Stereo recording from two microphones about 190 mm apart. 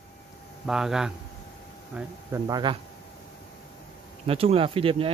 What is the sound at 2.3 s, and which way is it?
Speech, 20° right (ahead or behind).